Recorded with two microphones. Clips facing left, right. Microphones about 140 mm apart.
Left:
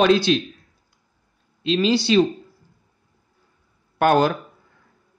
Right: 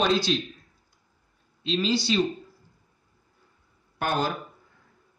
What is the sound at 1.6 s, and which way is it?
Speech, 70° left (ahead or behind).